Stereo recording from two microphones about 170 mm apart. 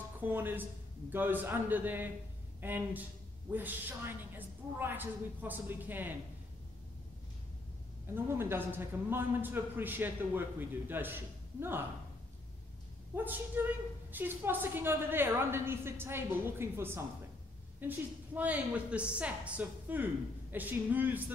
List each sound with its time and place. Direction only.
0.2 s a man's voice: 10° right (ahead or behind)
8.1 s a man's voice: 15° right (ahead or behind)
13.1 s a man's voice: 10° right (ahead or behind)